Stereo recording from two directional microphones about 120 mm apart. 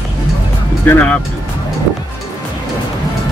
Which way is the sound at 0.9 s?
15° left (ahead or behind).